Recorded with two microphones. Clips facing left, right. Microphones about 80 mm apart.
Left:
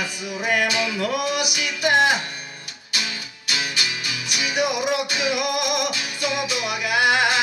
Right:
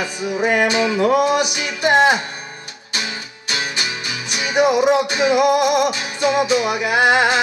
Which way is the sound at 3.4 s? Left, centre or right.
Right.